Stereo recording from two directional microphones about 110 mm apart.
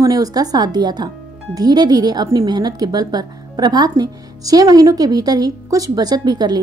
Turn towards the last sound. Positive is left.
turn(degrees=-40)  # may be behind; listen again after turning